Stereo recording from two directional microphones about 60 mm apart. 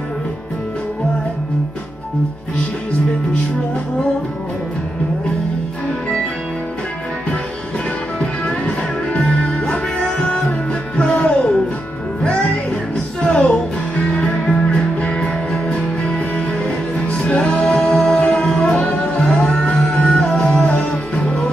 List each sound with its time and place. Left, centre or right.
8.2 s music: centre